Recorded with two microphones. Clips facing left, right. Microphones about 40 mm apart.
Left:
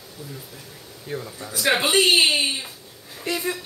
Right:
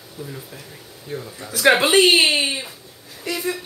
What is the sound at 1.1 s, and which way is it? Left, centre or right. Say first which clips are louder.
Speech: even; centre.